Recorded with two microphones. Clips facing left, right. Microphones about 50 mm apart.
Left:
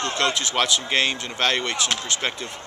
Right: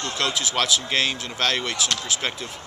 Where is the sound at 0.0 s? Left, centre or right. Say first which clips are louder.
Left 2 dB; centre.